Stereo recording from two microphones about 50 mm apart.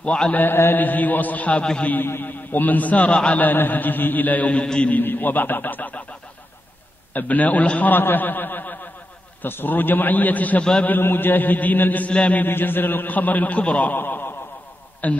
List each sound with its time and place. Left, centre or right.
0.0 s mantra: left
0.3 s a man's voice: left
1.6 s a man's voice: centre
2.0 s a man's voice: left
3.3 s a man's voice: left
5.0 s a man's voice: left
7.2 s a man's voice: left
10.6 s a man's voice: centre
10.9 s a man's voice: left
12.1 s mantra: left
12.4 s a man's voice: left
13.9 s a man's voice: left